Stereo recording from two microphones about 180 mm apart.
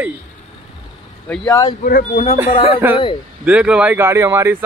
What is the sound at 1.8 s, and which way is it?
Speech, 50° left (ahead or behind).